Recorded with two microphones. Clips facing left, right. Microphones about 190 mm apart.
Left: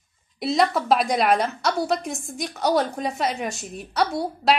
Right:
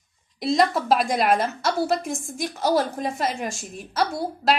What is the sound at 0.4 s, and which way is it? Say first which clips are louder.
A woman's voice: even; centre (ahead or behind).